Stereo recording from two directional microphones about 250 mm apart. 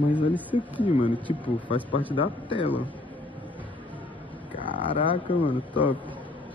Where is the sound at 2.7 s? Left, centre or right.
Centre.